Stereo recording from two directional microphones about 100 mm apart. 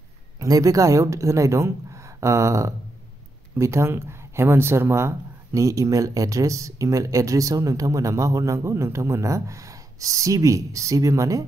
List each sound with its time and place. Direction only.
0.4 s speech: 35° right (ahead or behind)